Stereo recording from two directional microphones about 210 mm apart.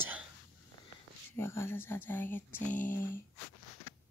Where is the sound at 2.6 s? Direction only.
40° left (ahead or behind).